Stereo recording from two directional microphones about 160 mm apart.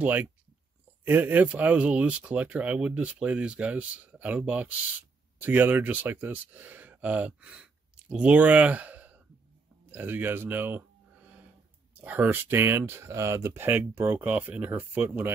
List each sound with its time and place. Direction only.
0.0 s speech: 10° right (ahead or behind)
9.8 s a sound: 10° right (ahead or behind)
11.9 s speech: 10° right (ahead or behind)